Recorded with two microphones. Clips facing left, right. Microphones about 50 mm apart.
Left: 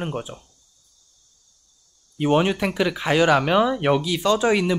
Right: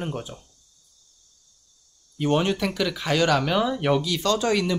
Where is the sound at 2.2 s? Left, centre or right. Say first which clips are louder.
Left 3 dB; centre.